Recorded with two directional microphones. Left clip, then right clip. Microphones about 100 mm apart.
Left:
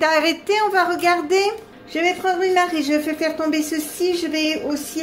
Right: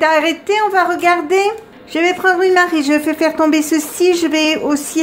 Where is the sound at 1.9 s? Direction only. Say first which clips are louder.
Right 6 dB; 75° right (ahead or behind).